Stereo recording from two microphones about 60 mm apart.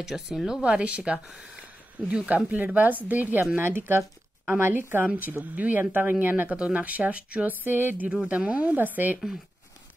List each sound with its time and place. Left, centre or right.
0.0 s speech: centre
0.6 s speech: centre; by 5.0 s right
5.0 s speech: right
8.3 s speech: right